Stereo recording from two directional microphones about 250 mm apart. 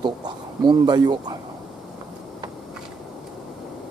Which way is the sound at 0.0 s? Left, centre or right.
Centre.